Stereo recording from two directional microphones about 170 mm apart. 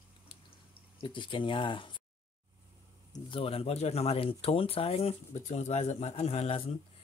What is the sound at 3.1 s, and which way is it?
Speech, 30° left (ahead or behind).